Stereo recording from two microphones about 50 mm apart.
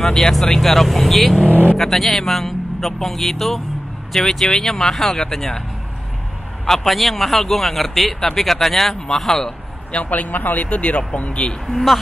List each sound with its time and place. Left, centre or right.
0.0 s a man's voice: centre
6.6 s a man's voice: centre
9.9 s a man's voice: left
10.7 s speech: left
11.6 s a man's voice: centre